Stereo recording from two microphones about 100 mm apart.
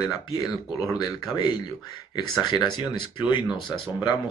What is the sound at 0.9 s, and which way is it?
Speech, 45° left (ahead or behind).